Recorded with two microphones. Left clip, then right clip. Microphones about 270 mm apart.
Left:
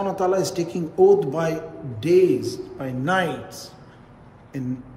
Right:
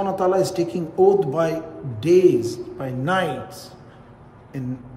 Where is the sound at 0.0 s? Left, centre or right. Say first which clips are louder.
Right 2 dB; centre.